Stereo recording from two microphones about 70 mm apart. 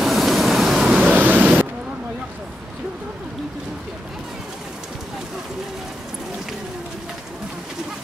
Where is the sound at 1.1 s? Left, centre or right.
Right.